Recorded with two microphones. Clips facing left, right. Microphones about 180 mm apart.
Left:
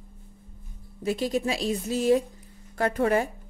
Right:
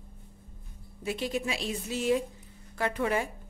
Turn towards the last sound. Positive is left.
turn(degrees=45)  # may be behind; listen again after turning